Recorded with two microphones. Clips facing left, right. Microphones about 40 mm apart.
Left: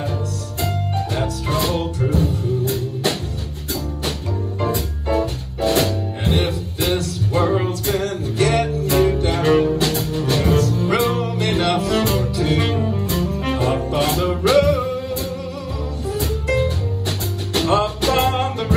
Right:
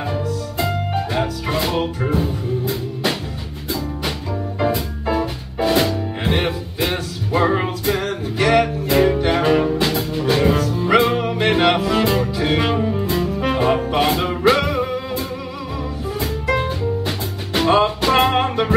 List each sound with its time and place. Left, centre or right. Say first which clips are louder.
0.1 s music: right 3 dB; right
5.1 s music: left 2 dB; right
12.7 s music: right 2 dB; right
13.1 s music: right 2 dB; right